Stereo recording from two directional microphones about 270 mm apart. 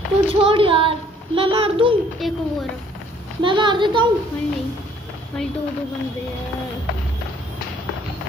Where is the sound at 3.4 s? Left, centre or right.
Centre.